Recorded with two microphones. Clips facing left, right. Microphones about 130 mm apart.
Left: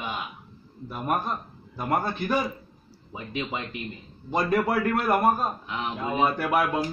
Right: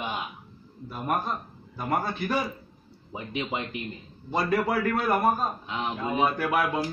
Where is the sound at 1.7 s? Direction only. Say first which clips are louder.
Left 2 dB; centre (ahead or behind).